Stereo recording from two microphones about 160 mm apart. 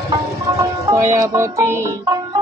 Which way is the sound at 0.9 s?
20° right (ahead or behind).